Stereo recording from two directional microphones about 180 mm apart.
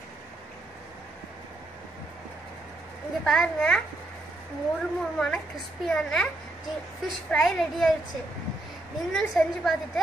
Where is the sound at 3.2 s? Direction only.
5° left (ahead or behind).